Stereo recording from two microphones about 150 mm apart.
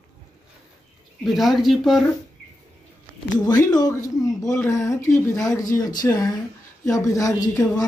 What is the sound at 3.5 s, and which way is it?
A woman's voice, 25° left (ahead or behind).